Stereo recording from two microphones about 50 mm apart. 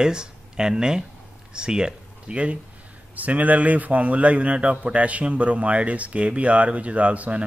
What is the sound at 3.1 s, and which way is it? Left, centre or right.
Speech, right.